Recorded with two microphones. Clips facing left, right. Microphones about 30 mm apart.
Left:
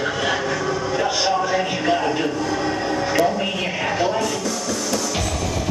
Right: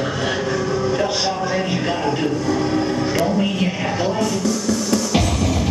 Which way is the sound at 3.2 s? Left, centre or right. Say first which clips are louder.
Right 2 dB; centre.